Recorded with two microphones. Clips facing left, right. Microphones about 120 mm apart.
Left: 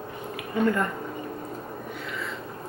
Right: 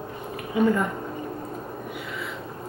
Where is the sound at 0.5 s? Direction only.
5° right (ahead or behind).